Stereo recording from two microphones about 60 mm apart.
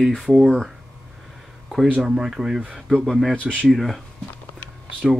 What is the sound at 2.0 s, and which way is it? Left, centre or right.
Speech, centre.